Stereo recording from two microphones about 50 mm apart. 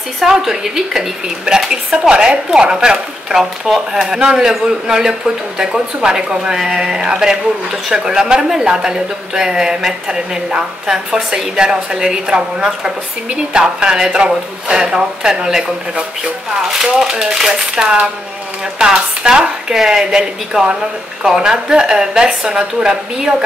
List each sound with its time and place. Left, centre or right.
0.2 s speech: centre
17.5 s a sound: right
18.8 s speech: centre